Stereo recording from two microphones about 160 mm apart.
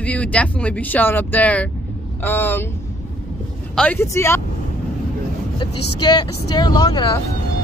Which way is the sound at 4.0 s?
15° left (ahead or behind).